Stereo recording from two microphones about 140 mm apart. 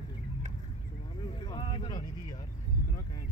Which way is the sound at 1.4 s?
30° left (ahead or behind).